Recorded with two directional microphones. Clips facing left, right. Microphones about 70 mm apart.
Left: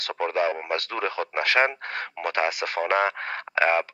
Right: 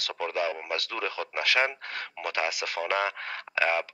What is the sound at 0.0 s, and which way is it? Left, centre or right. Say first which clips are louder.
A man's voice: left 5 dB; left.